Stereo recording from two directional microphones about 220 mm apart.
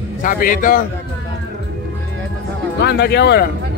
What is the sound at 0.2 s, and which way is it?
Speech, 40° left (ahead or behind).